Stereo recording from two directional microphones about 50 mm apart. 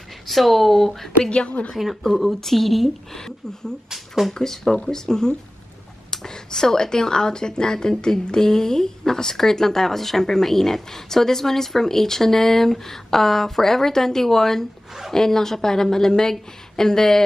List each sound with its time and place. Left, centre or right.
0.3 s speech: centre
1.3 s a woman's voice: left
1.8 s speech: centre
3.9 s speech: centre
4.3 s speech: centre